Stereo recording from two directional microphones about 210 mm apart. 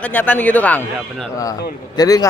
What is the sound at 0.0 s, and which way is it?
A man's voice, 10° left (ahead or behind).